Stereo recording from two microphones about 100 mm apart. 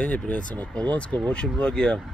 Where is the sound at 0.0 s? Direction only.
15° left (ahead or behind).